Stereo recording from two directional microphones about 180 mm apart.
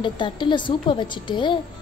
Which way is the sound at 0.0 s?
25° left (ahead or behind).